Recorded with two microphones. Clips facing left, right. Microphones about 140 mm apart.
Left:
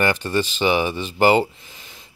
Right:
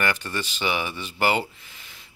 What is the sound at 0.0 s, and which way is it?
Speech, 25° left (ahead or behind).